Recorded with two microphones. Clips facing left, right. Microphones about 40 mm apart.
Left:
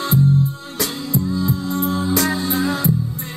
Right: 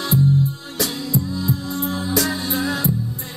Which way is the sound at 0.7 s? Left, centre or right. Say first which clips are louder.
Left 1 dB; left.